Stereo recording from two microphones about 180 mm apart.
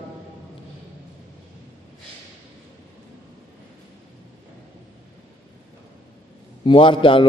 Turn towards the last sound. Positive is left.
turn(degrees=30)  # may be behind; listen again after turning